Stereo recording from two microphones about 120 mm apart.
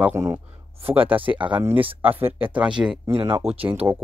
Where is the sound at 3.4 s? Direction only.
65° right (ahead or behind).